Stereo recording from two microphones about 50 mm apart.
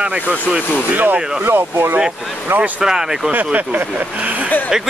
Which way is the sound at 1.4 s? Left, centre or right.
Right.